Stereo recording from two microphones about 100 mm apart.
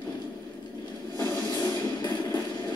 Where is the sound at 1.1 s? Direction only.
45° left (ahead or behind).